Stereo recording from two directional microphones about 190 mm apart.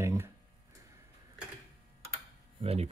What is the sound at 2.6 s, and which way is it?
Speech, 30° right (ahead or behind).